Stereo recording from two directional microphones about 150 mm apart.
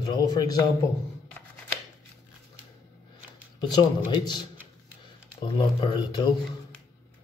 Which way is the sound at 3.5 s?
30° left (ahead or behind).